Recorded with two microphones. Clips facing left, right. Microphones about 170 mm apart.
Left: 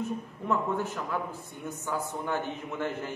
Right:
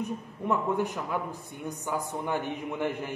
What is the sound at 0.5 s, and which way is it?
A man's voice, 15° right (ahead or behind).